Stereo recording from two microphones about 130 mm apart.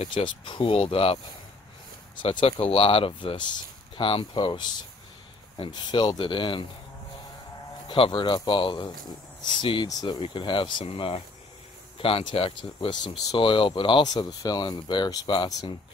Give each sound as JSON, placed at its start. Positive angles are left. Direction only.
{"t": 0.1, "sound": "speech", "side_deg": 40}
{"t": 2.6, "sound": "speech", "side_deg": 45}
{"t": 7.9, "sound": "speech", "side_deg": 40}